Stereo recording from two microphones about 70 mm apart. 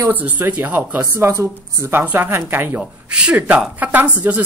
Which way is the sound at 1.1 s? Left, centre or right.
Right.